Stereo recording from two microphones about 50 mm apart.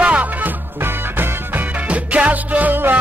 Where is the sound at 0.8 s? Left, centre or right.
Right.